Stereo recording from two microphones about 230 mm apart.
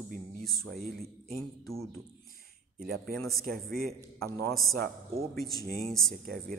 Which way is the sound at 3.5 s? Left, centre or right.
Right.